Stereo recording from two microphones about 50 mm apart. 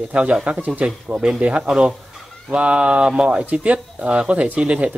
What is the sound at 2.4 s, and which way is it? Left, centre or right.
Speech, right.